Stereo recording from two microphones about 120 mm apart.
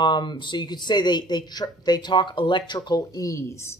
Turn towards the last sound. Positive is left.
turn(degrees=25)  # may be behind; listen again after turning